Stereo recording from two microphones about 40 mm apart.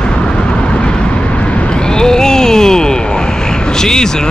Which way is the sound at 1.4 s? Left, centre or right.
Left.